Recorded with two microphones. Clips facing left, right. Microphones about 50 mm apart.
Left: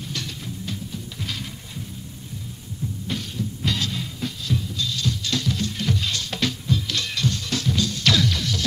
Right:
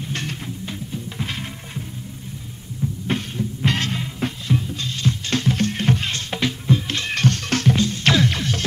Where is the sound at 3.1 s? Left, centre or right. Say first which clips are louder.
Right 4 dB; right.